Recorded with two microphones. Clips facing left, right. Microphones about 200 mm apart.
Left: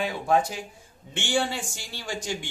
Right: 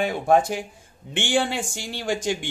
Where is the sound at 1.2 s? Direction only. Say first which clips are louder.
Right 4 dB; 55° right (ahead or behind).